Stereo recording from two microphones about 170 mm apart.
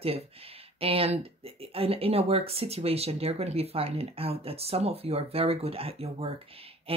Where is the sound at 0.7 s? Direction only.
35° right (ahead or behind).